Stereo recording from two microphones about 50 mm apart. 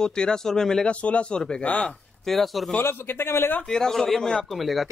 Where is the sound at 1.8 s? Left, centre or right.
Centre.